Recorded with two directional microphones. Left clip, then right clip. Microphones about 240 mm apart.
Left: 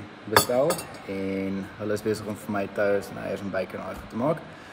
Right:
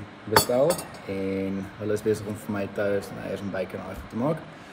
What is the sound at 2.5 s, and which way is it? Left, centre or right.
Speech, centre.